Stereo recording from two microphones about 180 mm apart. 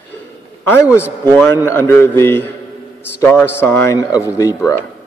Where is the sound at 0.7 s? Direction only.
15° left (ahead or behind).